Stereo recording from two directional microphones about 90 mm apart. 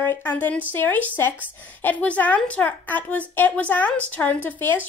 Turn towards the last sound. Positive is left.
turn(degrees=20)  # may be behind; listen again after turning